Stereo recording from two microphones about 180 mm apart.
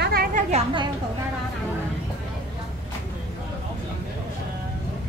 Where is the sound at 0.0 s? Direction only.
60° right (ahead or behind).